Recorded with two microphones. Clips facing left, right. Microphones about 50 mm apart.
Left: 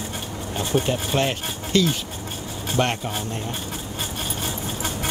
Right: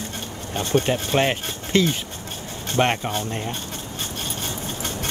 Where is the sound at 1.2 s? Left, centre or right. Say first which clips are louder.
Right 2 dB; right.